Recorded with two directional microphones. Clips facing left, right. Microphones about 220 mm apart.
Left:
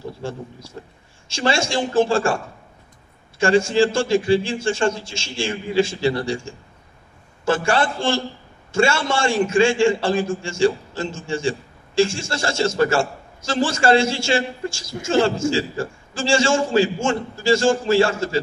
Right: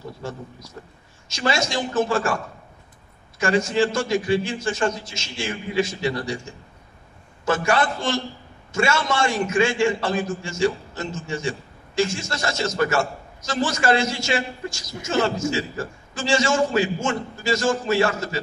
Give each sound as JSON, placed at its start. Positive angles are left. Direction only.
{"t": 0.2, "sound": "a man's voice", "side_deg": 30}